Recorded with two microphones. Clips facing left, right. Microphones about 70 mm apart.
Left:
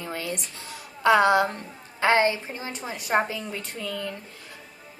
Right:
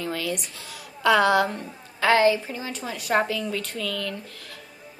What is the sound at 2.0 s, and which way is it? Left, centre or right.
A woman's voice, left.